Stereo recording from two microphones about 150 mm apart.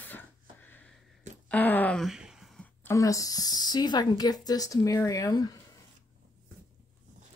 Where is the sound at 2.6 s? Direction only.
20° left (ahead or behind).